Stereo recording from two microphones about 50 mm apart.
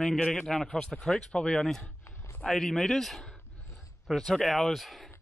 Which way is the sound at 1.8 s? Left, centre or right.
Left.